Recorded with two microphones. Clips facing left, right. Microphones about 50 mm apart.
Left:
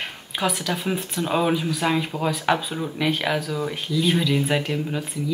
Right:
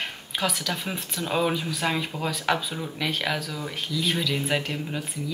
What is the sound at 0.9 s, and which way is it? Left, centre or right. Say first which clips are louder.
Speech: left 5 dB; centre.